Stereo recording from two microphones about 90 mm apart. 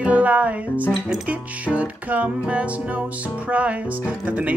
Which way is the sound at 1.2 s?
15° right (ahead or behind).